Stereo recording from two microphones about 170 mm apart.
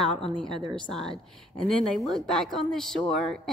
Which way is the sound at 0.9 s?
5° left (ahead or behind).